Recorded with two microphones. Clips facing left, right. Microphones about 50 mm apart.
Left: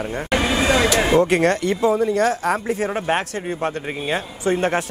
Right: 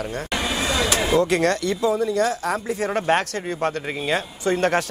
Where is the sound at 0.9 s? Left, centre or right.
Left.